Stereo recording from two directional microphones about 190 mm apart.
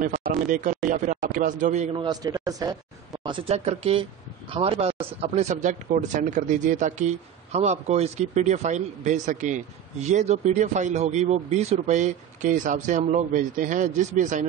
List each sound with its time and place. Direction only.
0.0 s speech: 45° right (ahead or behind)
2.0 s speech: 20° right (ahead or behind); by 14.5 s 40° right (ahead or behind)